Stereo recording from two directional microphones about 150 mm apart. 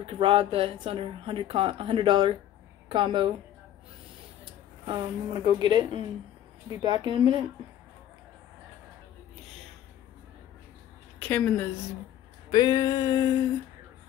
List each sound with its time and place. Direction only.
0.0 s a woman's voice: 35° right (ahead or behind)
4.8 s a woman's voice: 30° right (ahead or behind)
11.1 s a woman's voice: 10° left (ahead or behind)
12.4 s a sound: 30° left (ahead or behind)